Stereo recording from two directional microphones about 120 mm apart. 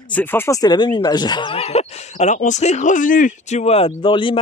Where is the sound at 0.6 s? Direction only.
40° left (ahead or behind); by 3.9 s 60° left (ahead or behind).